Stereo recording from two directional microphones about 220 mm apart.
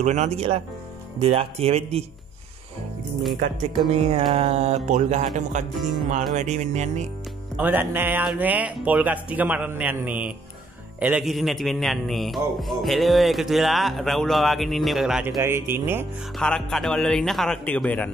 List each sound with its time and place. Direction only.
0.0 s speech: 30° right (ahead or behind)
3.3 s speech: 30° right (ahead or behind)
7.5 s speech: 10° right (ahead or behind)
16.3 s speech: 5° left (ahead or behind)